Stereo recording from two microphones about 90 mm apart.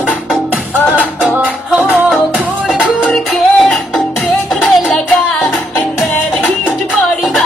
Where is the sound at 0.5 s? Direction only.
15° right (ahead or behind).